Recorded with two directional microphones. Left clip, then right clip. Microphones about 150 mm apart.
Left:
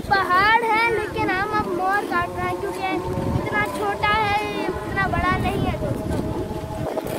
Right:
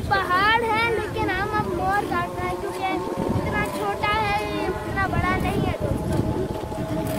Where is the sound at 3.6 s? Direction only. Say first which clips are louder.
Left 5 dB; 90° left.